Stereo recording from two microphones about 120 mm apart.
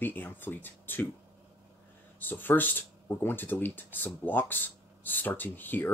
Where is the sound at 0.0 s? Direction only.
15° left (ahead or behind).